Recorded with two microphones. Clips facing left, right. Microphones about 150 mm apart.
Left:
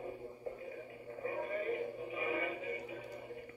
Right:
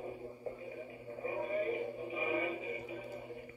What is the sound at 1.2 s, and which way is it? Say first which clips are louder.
Synthetic singing: right 2 dB; 10° right (ahead or behind).